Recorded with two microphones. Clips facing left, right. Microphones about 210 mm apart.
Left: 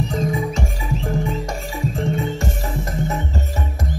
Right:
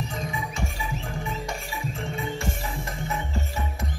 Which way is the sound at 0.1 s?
40° left (ahead or behind).